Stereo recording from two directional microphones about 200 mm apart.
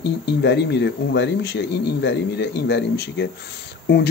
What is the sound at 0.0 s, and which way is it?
Speech, 60° left (ahead or behind).